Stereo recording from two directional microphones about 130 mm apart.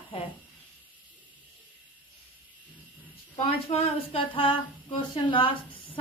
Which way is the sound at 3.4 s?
50° left (ahead or behind).